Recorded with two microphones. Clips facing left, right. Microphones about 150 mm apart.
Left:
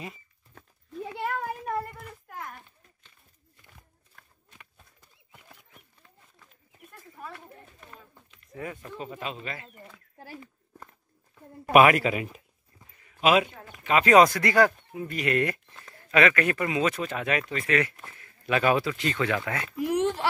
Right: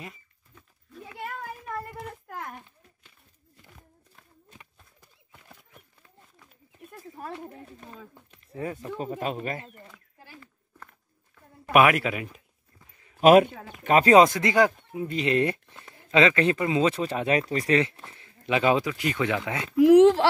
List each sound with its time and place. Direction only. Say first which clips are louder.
8.5 s speech: right 4 dB; 30° right (ahead or behind)
10.4 s a sound: left 2 dB; 20° left (ahead or behind)
11.7 s speech: left 1 dB; centre (ahead or behind)
13.2 s speech: right 7 dB; 50° right (ahead or behind)
14.0 s speech: even; 25° right (ahead or behind)
19.8 s a sound: right 12 dB; 90° right